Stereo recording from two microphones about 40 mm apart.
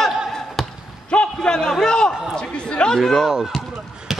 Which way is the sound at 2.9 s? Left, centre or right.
Centre.